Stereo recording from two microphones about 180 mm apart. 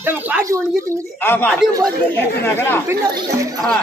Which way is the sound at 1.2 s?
10° left (ahead or behind).